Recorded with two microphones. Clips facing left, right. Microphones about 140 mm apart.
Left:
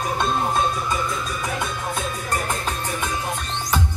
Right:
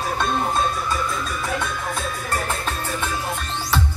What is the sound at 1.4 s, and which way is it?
Music, 20° left (ahead or behind).